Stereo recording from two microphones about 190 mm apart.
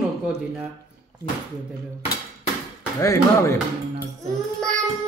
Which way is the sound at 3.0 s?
15° left (ahead or behind).